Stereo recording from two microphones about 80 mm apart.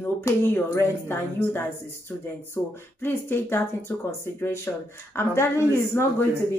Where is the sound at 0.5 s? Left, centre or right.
Left.